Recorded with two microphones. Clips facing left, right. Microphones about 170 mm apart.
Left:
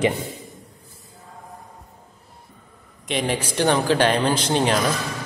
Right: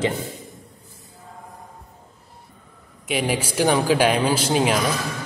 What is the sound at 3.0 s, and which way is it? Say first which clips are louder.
A man's voice: right 1 dB; 10° right (ahead or behind).